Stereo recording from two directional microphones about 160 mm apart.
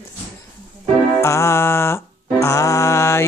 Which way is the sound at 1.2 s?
20° left (ahead or behind).